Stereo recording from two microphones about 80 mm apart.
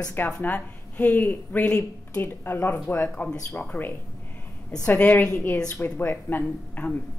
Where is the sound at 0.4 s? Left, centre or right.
Left.